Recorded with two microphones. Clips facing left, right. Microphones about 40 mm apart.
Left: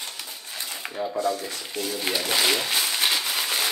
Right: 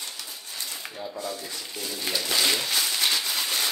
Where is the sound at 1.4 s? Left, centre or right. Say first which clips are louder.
Left 4 dB; left.